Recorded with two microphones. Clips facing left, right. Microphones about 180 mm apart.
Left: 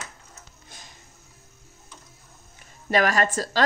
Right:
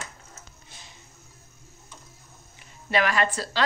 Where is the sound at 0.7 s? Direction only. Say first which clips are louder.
Left 2 dB; 45° left (ahead or behind).